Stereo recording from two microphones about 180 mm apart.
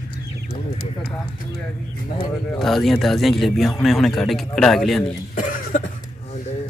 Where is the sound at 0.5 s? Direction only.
35° left (ahead or behind).